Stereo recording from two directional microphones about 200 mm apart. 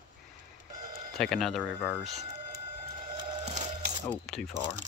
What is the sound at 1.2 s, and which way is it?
Speech, centre (ahead or behind).